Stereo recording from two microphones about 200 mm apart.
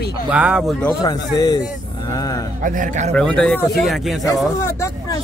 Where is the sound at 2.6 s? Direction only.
40° right (ahead or behind).